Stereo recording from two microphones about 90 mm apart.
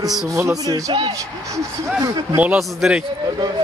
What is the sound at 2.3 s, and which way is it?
Speech, 15° right (ahead or behind).